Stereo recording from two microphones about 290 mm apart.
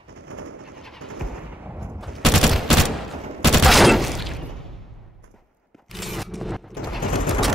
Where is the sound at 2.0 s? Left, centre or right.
Centre.